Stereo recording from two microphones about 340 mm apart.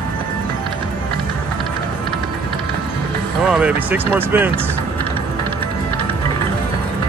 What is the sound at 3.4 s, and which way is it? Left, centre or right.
Speech, centre.